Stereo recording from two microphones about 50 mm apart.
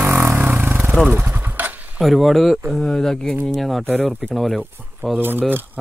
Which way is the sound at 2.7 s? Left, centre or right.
Centre.